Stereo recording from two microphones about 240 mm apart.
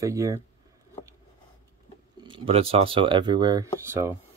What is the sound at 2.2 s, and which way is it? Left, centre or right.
Speech, right.